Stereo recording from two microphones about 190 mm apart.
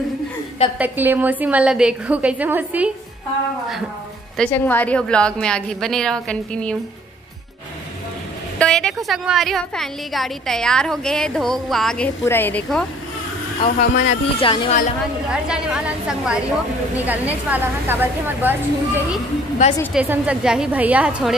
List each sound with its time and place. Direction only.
0.7 s a woman's voice: 10° right (ahead or behind)
4.4 s a woman's voice: 10° left (ahead or behind)
8.5 s a woman's voice: 5° left (ahead or behind)
13.6 s a woman's voice: 35° left (ahead or behind)
15.2 s a woman's voice: 5° right (ahead or behind)